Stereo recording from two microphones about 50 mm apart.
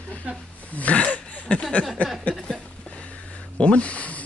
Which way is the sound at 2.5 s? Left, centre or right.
Centre.